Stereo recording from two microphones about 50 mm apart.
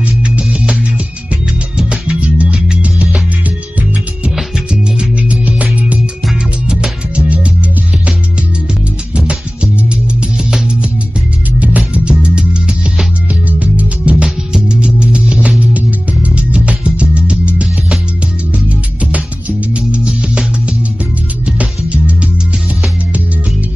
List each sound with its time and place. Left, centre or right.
0.0 s music: right
4.9 s music: right
6.7 s music: centre
9.1 s music: right